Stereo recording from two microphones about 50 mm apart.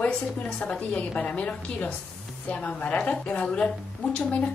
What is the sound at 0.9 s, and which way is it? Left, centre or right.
A woman's voice, left.